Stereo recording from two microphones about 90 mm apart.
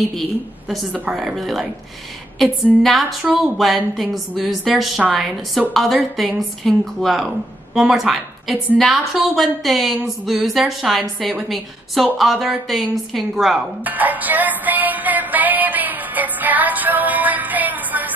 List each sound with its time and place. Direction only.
1.1 s a woman's voice: centre (ahead or behind)
13.8 s music: 20° right (ahead or behind)